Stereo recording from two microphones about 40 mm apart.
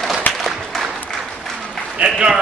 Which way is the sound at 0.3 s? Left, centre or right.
Centre.